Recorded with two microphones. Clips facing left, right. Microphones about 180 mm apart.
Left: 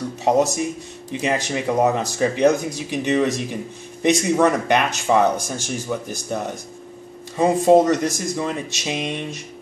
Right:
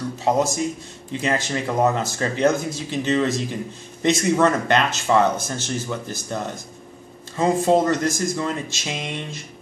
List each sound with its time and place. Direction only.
0.2 s a man's voice: 20° left (ahead or behind)